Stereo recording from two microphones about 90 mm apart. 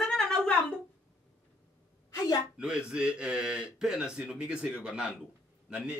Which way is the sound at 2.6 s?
10° right (ahead or behind).